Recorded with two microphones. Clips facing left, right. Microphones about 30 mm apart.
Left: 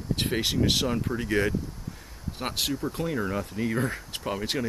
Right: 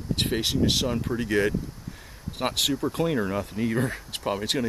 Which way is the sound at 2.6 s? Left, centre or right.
Right.